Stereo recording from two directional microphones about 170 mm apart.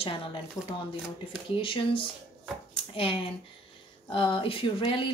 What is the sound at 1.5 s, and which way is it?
Speech, 30° left (ahead or behind).